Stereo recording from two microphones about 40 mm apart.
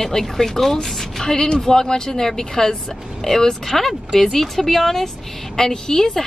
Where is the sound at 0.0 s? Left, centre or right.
Centre.